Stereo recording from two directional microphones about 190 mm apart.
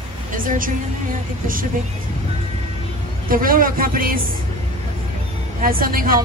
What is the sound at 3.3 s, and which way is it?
Speech, 50° right (ahead or behind).